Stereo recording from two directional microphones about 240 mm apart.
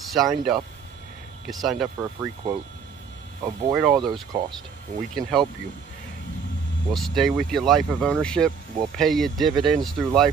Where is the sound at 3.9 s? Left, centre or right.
Centre.